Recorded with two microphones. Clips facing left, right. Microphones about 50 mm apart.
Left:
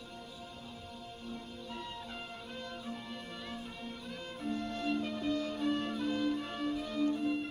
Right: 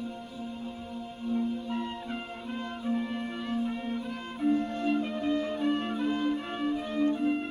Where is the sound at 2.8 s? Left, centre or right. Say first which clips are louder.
Right 12 dB; right.